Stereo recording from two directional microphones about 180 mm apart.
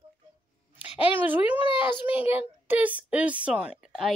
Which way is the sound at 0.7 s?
10° right (ahead or behind).